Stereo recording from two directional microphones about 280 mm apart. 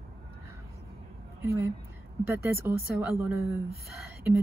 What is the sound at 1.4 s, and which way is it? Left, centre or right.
Speech, centre.